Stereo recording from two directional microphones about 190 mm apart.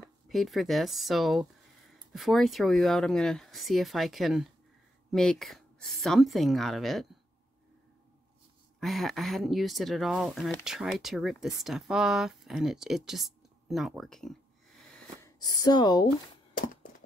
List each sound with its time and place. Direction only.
0.3 s speech: centre (ahead or behind)
8.7 s speech: centre (ahead or behind)
15.2 s speech: 20° left (ahead or behind)
16.5 s a sound: 45° left (ahead or behind)